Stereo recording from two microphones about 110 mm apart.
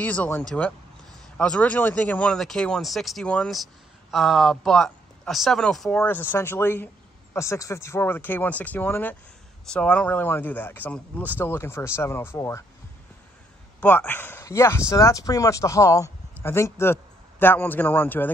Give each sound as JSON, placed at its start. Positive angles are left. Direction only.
{"t": 0.0, "sound": "speech", "side_deg": 15}
{"t": 6.0, "sound": "speech", "side_deg": 20}
{"t": 13.7, "sound": "speech", "side_deg": 15}